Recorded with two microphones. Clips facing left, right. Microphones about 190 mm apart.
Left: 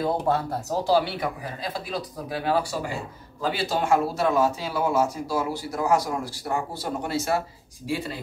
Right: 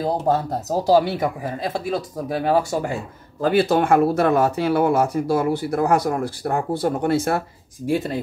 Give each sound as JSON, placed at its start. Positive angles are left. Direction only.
{"t": 0.0, "sound": "speech", "side_deg": -40}